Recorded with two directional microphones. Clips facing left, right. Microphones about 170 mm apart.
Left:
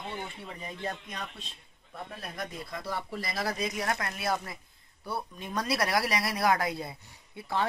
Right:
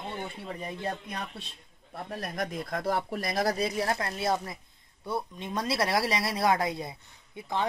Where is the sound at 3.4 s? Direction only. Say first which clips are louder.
Right 4 dB; 35° right (ahead or behind); by 7.7 s 20° right (ahead or behind).